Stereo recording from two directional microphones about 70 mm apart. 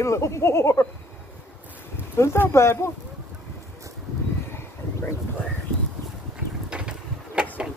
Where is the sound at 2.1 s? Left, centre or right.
Left.